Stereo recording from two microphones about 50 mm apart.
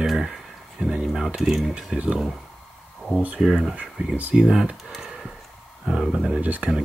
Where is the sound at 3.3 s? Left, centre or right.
Centre.